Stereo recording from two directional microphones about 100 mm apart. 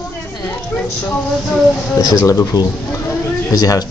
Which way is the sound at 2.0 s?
30° left (ahead or behind).